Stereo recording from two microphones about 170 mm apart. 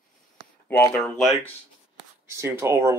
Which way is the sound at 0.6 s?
15° left (ahead or behind).